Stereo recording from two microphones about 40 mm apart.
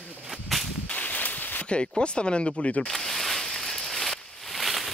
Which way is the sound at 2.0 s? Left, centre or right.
Left.